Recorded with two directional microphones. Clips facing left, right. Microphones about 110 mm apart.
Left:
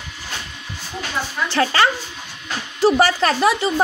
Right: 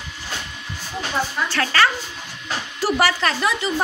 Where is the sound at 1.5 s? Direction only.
25° left (ahead or behind).